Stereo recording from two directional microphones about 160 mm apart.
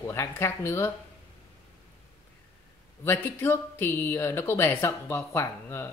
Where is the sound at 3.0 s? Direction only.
15° left (ahead or behind).